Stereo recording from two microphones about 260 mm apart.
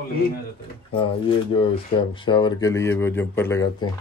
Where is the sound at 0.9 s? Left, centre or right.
Centre.